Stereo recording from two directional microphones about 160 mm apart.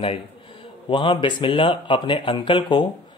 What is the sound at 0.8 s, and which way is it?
Speech, 30° left (ahead or behind).